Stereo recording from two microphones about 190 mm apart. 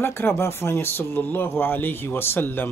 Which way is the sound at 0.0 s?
10° left (ahead or behind).